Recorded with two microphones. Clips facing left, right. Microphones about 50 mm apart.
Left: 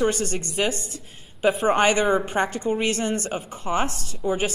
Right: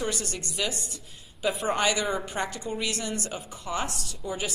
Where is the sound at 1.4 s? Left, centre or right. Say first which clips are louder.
Left 7 dB; left.